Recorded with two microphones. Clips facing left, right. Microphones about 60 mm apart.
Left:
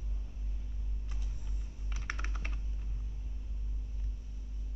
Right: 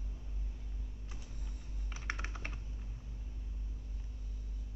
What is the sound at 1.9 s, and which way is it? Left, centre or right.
Computer keyboard, right.